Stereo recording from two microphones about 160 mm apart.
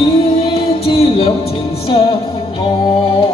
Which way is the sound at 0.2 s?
35° left (ahead or behind).